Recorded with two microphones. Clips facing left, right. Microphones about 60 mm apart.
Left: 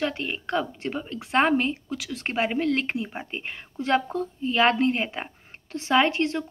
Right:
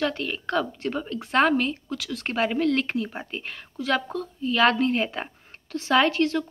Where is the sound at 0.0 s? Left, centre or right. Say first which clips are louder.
Right 1 dB; centre.